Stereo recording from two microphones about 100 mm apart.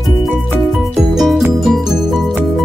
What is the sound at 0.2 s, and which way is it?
Music, centre (ahead or behind).